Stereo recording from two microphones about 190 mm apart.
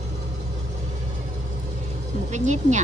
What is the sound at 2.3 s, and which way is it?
Speech, 40° right (ahead or behind).